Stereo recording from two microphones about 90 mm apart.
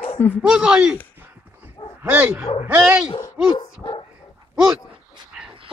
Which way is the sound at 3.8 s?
65° left (ahead or behind).